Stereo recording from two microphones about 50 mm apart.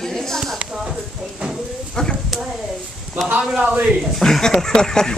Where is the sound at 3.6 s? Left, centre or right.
Right.